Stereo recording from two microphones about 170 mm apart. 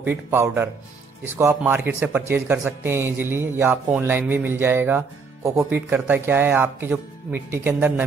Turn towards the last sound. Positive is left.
turn(degrees=-10)  # may be behind; listen again after turning